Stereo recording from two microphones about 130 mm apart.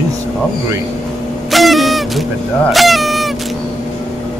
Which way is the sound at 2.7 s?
Centre (ahead or behind).